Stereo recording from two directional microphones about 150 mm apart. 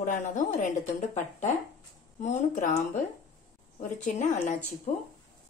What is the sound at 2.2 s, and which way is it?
Speech, 55° left (ahead or behind).